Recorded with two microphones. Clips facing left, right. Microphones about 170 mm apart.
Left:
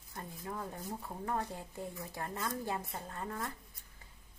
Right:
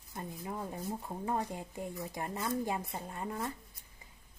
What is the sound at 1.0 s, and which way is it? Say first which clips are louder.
Speech: right 1 dB; 15° right (ahead or behind).